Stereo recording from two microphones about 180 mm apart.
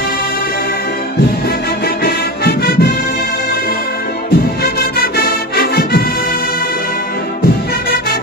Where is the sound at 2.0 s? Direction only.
60° left (ahead or behind).